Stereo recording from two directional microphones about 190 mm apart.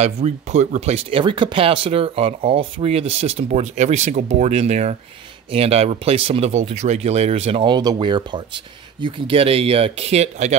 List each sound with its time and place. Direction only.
0.0 s speech: 35° right (ahead or behind)